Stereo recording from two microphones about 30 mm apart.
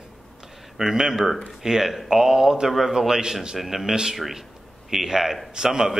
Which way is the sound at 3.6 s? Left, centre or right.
Centre.